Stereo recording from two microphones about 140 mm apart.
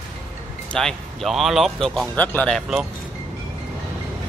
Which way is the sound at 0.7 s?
Centre (ahead or behind).